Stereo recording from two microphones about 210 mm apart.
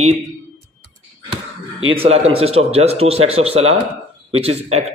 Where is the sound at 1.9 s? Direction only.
30° right (ahead or behind).